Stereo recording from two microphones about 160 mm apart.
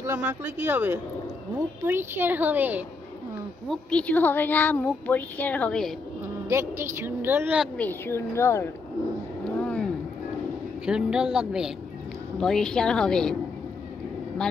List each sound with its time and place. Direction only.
0.0 s a woman's voice: 15° right (ahead or behind)
3.6 s speech: 5° left (ahead or behind)
6.5 s a woman's voice: 15° right (ahead or behind)
7.7 s speech: 10° left (ahead or behind)
9.5 s vehicle: 10° left (ahead or behind)
10.9 s a woman's voice: 5° right (ahead or behind)